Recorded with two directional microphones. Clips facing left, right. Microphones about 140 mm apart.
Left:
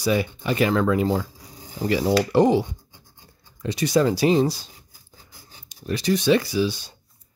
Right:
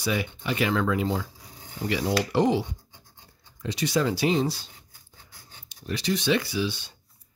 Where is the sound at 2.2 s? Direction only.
45° left (ahead or behind).